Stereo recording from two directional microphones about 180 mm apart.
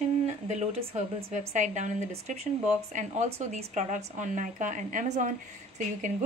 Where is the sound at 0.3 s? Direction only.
35° right (ahead or behind).